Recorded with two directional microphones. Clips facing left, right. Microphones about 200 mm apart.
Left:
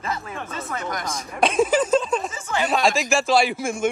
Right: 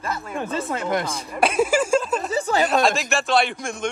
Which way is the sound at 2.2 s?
35° right (ahead or behind).